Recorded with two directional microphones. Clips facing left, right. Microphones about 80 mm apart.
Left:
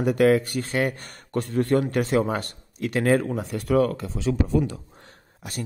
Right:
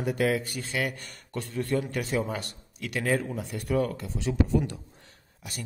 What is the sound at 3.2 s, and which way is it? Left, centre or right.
Speech, left.